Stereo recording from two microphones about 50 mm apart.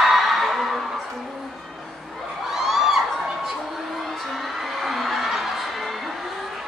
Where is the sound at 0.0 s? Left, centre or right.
Centre.